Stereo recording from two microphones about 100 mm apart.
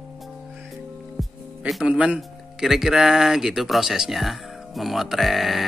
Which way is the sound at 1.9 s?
10° right (ahead or behind).